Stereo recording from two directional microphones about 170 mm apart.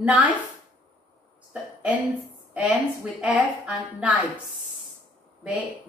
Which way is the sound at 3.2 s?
5° right (ahead or behind).